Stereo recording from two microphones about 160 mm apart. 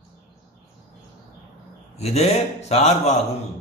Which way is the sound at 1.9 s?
40° left (ahead or behind).